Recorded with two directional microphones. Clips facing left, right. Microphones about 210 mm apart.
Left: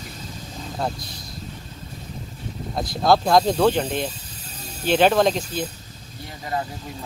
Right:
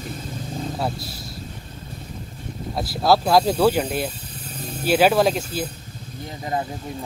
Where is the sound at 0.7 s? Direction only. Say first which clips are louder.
Right 1 dB; 5° right (ahead or behind).